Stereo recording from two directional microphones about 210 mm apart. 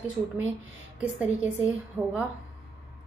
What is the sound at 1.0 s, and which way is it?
A woman's voice, 5° right (ahead or behind).